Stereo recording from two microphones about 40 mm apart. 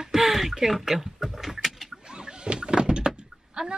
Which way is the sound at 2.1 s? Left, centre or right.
Right.